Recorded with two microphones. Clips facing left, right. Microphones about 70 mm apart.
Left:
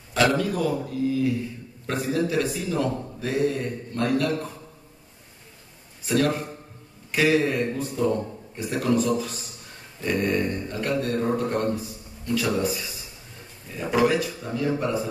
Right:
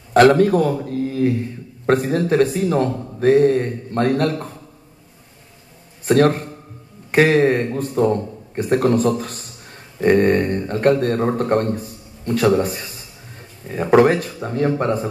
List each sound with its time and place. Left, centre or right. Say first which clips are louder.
0.1 s a man's voice: right 10 dB; right
6.0 s a man's voice: right 8 dB; right